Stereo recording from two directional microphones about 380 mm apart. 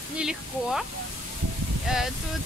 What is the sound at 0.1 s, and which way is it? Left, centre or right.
Speech, centre.